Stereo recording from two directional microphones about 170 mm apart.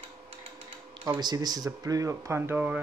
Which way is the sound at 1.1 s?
25° right (ahead or behind).